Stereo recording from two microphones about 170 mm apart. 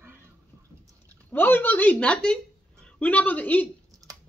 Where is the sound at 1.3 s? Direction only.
10° left (ahead or behind).